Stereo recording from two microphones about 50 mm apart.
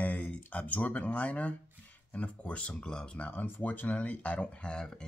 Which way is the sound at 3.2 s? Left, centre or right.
Left.